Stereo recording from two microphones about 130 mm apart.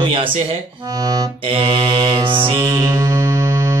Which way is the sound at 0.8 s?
30° right (ahead or behind).